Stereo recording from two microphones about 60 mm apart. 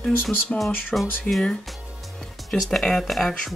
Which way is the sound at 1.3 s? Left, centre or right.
Centre.